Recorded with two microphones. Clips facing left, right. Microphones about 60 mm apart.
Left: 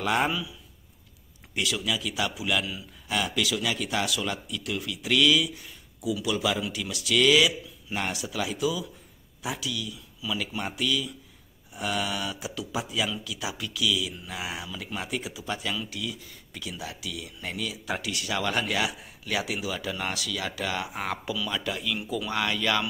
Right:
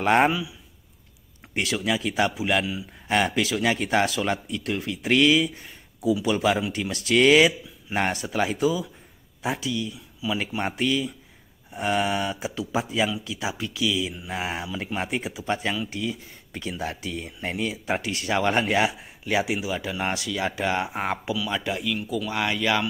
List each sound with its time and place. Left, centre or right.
0.0 s speech: right
1.5 s speech: right
3.1 s speech: right
21.8 s speech: centre
22.3 s speech: centre